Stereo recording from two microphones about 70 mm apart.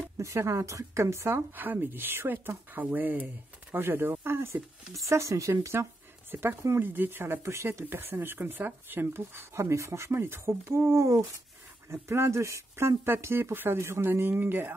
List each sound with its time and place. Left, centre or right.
0.2 s speech: right
1.5 s speech: right
4.9 s speech: right